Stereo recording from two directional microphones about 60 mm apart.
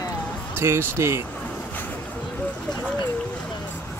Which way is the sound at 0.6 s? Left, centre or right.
Right.